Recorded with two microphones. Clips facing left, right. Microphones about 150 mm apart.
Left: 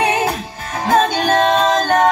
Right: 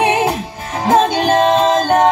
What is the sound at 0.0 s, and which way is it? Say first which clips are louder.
Music: right 3 dB; 20° right (ahead or behind).